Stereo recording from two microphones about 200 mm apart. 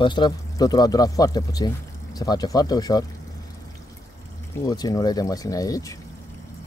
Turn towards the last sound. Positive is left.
turn(degrees=15)  # may be behind; listen again after turning